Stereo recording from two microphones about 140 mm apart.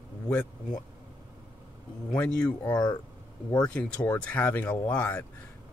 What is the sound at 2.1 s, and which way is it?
Speech, 10° left (ahead or behind).